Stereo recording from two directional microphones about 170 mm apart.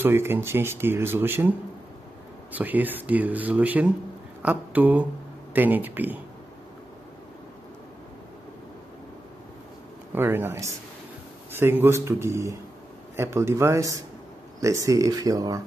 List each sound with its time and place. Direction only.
0.0 s speech: 15° right (ahead or behind)
2.5 s speech: 10° right (ahead or behind)
10.1 s speech: 15° right (ahead or behind)